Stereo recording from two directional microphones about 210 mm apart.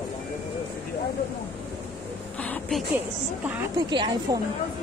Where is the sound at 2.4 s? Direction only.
5° left (ahead or behind).